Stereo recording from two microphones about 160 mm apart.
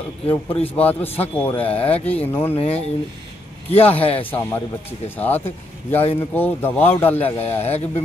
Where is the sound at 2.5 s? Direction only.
40° left (ahead or behind).